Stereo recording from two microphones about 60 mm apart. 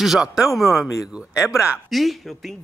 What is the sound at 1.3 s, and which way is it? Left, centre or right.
Speech, left.